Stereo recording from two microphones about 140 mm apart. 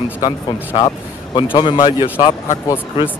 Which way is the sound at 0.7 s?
40° left (ahead or behind).